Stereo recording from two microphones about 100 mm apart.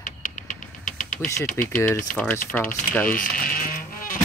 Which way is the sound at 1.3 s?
30° left (ahead or behind).